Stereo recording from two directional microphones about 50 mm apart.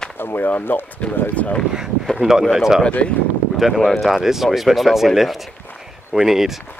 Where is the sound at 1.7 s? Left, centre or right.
Centre.